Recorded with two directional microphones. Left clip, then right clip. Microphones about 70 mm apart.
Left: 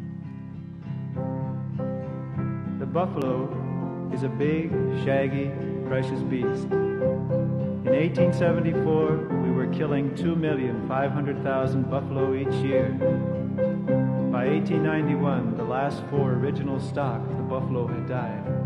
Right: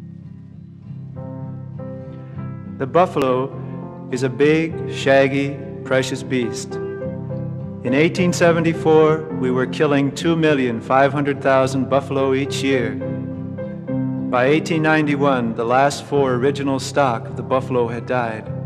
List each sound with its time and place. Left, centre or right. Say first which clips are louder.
2.8 s speech: right 11 dB; right
4.1 s speech: right 11 dB; right